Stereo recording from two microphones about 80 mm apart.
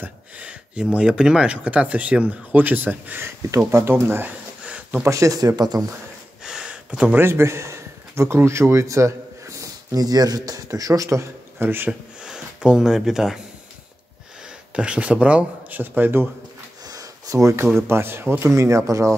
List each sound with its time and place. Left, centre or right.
0.0 s speech: centre
3.4 s speech: right; by 5.0 s centre
5.0 s speech: right
6.4 s a sound: centre
7.2 s a man's voice: right
11.5 s speech: right
12.2 s speech: centre
14.8 s speech: centre
16.8 s a sound: right
17.7 s speech: right
18.5 s speech: right